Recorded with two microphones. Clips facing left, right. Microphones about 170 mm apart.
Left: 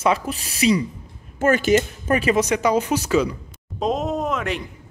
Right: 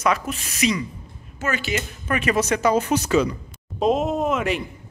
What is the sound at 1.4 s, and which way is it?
Speech, 50° left (ahead or behind).